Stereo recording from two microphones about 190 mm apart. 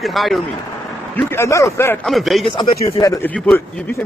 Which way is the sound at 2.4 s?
20° left (ahead or behind).